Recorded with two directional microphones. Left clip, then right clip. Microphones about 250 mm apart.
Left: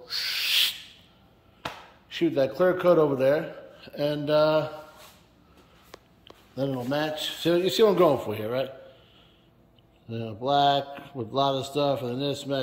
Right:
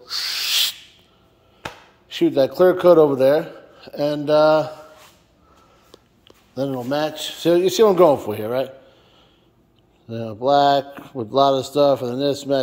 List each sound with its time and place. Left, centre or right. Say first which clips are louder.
0.0 s owl: right 4 dB; centre
1.6 s speech: right 2 dB; right
6.5 s speech: right 5 dB; centre
10.0 s speech: right 8 dB; centre